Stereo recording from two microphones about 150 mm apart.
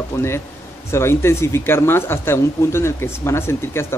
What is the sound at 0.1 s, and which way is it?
Speech, 20° left (ahead or behind).